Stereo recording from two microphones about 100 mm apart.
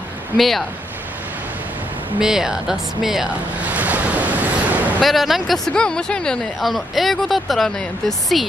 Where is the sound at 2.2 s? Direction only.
5° right (ahead or behind).